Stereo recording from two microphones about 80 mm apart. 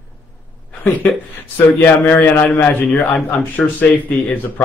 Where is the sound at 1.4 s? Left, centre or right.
Left.